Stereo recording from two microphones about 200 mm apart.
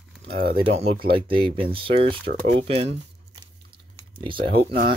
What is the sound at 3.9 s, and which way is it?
Typing, 25° right (ahead or behind).